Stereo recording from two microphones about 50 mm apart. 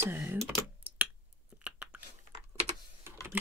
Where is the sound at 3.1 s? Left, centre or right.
Right.